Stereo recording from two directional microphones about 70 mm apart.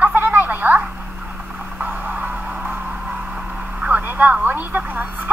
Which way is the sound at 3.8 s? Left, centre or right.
Right.